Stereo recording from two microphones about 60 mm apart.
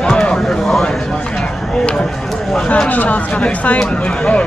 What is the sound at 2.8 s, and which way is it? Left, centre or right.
Speech, left.